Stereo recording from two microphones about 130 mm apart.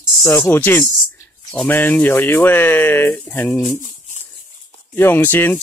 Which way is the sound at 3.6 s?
65° left (ahead or behind).